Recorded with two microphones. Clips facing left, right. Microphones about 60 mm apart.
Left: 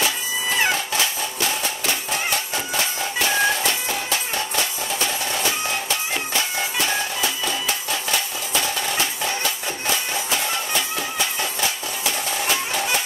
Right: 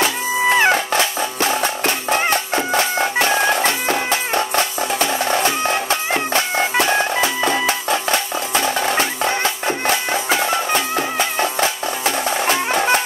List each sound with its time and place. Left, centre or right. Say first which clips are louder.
0.5 s music: right 7 dB; right